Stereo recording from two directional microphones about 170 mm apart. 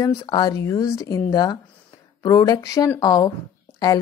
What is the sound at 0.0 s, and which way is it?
A woman's voice, 20° left (ahead or behind).